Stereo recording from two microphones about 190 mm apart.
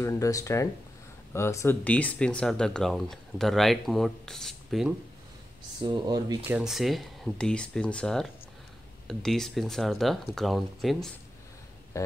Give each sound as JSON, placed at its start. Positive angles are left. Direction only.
{"t": 0.0, "sound": "speech", "side_deg": 15}
{"t": 5.8, "sound": "speech", "side_deg": -20}